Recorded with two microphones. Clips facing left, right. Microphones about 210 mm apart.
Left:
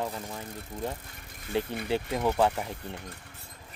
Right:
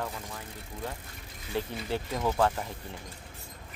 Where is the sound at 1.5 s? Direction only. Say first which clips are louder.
Left 3 dB; 20° left (ahead or behind).